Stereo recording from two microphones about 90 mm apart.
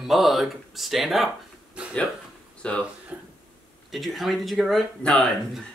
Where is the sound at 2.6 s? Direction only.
10° left (ahead or behind).